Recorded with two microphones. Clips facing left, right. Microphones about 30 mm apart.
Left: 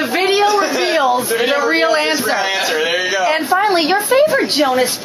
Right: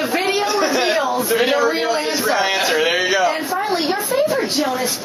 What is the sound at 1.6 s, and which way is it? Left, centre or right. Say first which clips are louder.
Speech: left 4 dB; left.